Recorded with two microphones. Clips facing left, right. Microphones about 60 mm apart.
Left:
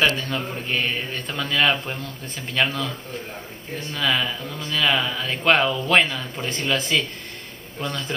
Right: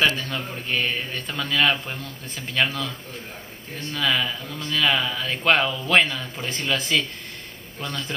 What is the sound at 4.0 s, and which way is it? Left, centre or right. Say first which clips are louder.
Speech: left 1 dB; centre.